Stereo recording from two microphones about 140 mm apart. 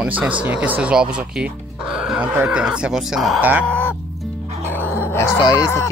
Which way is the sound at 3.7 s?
10° left (ahead or behind).